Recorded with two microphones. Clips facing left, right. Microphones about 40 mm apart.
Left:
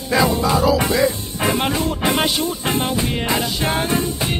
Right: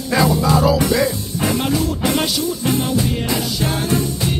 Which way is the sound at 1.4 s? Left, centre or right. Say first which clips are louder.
Right 1 dB; left.